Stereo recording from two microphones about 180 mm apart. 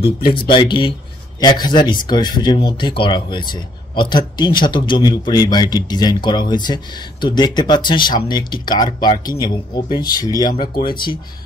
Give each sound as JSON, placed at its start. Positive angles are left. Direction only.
{"t": 0.3, "sound": "speech", "side_deg": 25}
{"t": 10.8, "sound": "speech", "side_deg": 55}